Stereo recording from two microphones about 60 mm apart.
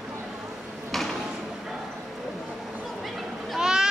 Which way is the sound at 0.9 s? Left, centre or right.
Centre.